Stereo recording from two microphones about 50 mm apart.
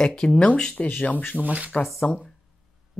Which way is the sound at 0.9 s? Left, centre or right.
Left.